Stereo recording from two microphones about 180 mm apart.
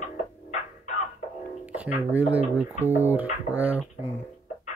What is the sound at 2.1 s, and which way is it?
Speech, 10° right (ahead or behind).